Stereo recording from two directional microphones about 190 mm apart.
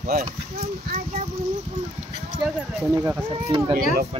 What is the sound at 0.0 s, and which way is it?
Speech, 50° right (ahead or behind).